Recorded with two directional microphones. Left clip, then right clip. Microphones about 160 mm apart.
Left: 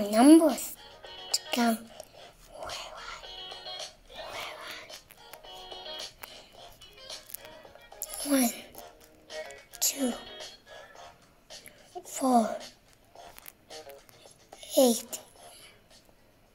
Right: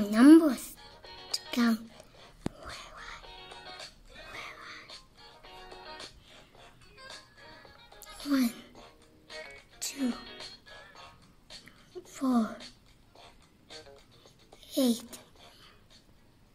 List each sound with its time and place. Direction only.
0.1 s a woman's voice: 30° right (ahead or behind)
1.0 s music: 10° right (ahead or behind)
2.6 s whispering: 20° right (ahead or behind)
3.3 s music: 5° right (ahead or behind)
8.0 s music: 15° right (ahead or behind)
11.6 s a sound: 15° right (ahead or behind)
14.6 s a sound: 15° right (ahead or behind)